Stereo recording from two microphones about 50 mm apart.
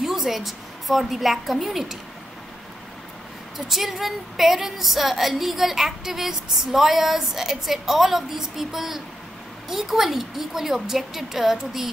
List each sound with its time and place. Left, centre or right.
0.0 s a woman's voice: centre
3.5 s a woman's voice: centre